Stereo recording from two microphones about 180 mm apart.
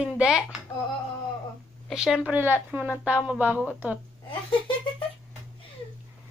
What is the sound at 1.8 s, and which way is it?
A woman's voice, 5° right (ahead or behind).